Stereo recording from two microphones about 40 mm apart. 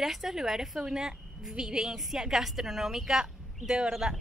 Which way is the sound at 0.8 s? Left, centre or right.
Centre.